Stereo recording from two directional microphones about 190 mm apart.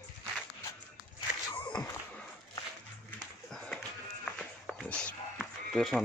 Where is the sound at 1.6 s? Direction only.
20° left (ahead or behind).